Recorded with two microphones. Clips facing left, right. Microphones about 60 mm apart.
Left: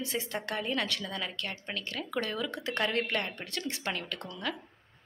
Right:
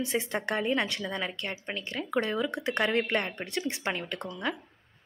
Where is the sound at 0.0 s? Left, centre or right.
Right.